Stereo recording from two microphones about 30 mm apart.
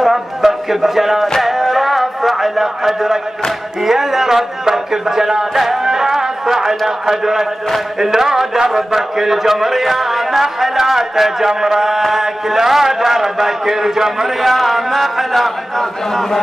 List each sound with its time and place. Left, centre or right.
0.0 s speech: centre
1.4 s a sound: centre
3.8 s a man's voice: centre
5.5 s speech: centre
5.9 s a man's voice: centre
14.4 s speech: centre
16.1 s a man's voice: centre